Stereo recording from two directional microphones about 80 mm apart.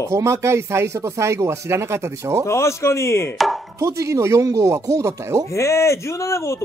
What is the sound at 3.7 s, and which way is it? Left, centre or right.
Speech, right.